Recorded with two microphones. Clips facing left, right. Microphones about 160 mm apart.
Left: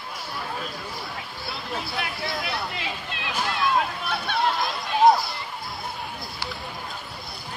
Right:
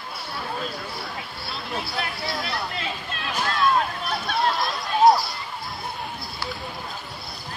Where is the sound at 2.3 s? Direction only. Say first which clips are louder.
Right 1 dB; 10° left (ahead or behind).